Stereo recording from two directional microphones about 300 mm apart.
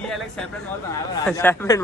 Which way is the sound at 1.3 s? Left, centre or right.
Centre.